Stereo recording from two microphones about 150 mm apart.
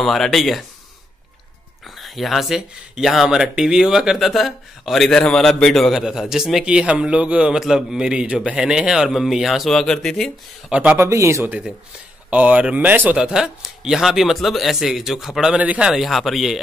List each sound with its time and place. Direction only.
0.0 s speech: centre (ahead or behind)
2.0 s speech: centre (ahead or behind)
10.7 s a man's voice: 10° right (ahead or behind)
11.1 s speech: 20° right (ahead or behind); by 16.6 s centre (ahead or behind)